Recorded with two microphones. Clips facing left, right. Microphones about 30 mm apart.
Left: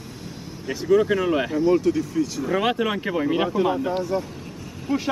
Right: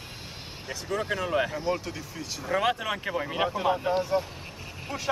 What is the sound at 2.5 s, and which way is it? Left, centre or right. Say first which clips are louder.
Speech: left 1 dB; centre.